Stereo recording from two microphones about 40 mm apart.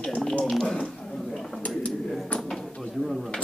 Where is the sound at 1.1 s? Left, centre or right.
Centre.